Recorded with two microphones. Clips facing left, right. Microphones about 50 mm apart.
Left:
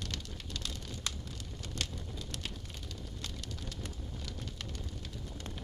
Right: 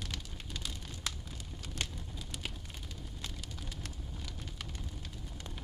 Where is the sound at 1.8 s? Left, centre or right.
Centre.